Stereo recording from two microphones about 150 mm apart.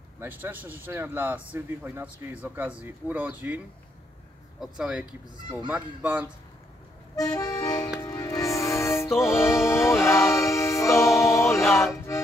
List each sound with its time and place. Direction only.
0.2 s speech: 10° right (ahead or behind)
7.2 s accordion: 25° left (ahead or behind)
8.0 s music: 20° left (ahead or behind)